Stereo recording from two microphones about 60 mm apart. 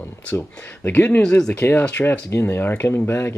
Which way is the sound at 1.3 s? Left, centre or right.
Centre.